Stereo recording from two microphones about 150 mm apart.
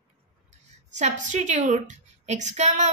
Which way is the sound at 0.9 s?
50° right (ahead or behind).